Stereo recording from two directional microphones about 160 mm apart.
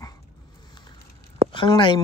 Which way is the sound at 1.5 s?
30° left (ahead or behind).